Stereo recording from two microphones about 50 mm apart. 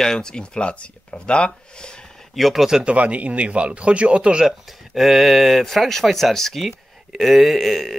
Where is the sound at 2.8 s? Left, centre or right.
Right.